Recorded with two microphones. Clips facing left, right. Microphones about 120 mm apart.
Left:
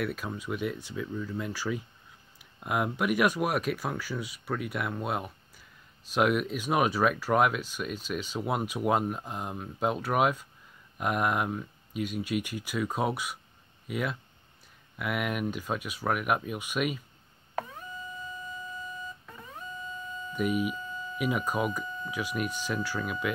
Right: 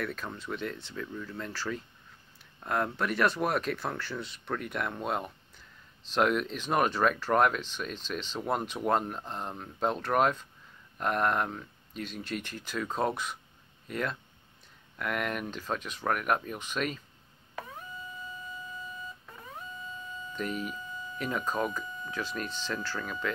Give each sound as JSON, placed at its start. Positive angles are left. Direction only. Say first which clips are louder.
{"t": 0.0, "sound": "speech", "louder": "left 3 dB", "side_deg": 10}
{"t": 20.3, "sound": "speech", "louder": "left 6 dB", "side_deg": 10}